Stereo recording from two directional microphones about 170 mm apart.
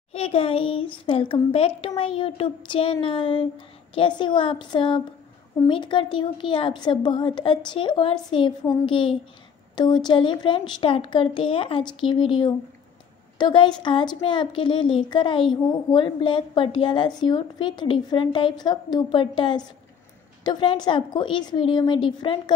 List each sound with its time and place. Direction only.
0.1 s a child's voice: 35° left (ahead or behind)